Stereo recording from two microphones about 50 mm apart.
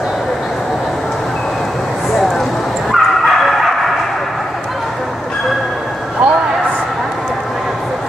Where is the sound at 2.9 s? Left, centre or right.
Centre.